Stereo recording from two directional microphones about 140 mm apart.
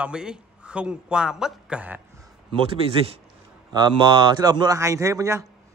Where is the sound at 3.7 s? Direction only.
30° right (ahead or behind).